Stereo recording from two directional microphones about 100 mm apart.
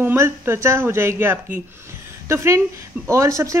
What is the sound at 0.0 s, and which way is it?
Speech, 25° right (ahead or behind).